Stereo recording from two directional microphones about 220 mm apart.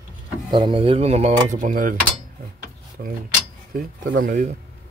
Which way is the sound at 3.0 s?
45° right (ahead or behind).